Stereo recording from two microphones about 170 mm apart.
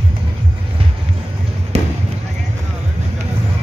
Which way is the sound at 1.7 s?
45° right (ahead or behind).